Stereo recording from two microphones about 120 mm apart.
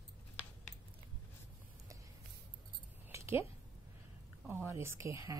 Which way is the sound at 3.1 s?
20° right (ahead or behind).